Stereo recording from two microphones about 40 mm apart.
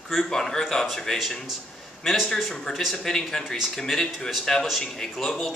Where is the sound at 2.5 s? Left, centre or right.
Centre.